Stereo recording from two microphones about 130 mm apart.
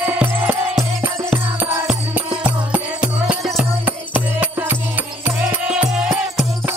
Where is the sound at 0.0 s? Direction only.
15° right (ahead or behind).